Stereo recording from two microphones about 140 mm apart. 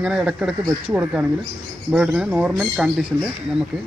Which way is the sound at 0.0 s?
5° right (ahead or behind).